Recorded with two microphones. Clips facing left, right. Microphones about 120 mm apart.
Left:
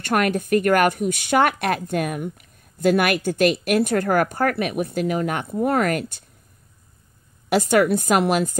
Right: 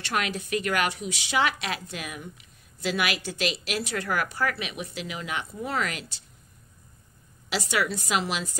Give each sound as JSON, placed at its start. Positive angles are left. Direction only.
{"t": 0.0, "sound": "speech", "side_deg": 55}
{"t": 7.4, "sound": "speech", "side_deg": 50}